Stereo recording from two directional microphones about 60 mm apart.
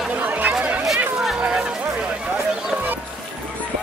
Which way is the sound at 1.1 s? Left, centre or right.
Centre.